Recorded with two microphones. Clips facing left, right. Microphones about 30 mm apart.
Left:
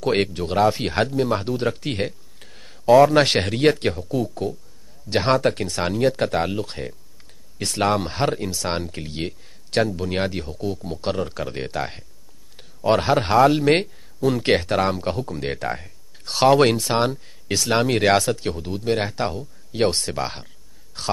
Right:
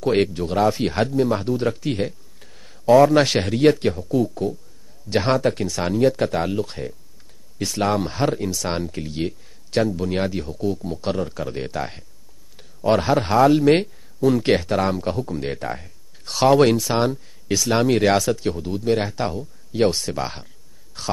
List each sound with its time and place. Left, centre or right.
0.6 s speech: centre
1.8 s speech: left
2.4 s a sound: centre
2.9 s speech: centre
4.1 s speech: centre
12.5 s a sound: centre
13.0 s speech: left
15.7 s a sound: centre
16.7 s speech: centre